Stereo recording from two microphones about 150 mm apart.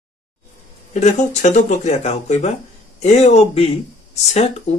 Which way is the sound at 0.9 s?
50° left (ahead or behind).